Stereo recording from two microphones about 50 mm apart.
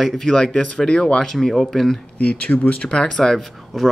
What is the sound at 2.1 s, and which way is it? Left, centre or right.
Speech, left.